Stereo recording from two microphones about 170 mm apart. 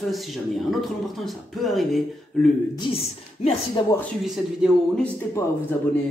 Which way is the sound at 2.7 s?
30° left (ahead or behind).